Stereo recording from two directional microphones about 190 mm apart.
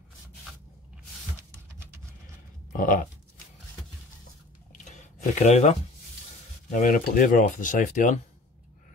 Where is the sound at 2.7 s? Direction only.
45° left (ahead or behind).